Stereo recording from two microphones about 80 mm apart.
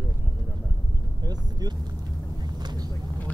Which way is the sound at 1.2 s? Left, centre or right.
Right.